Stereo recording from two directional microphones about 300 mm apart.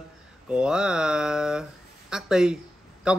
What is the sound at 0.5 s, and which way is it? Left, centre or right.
Speech, centre.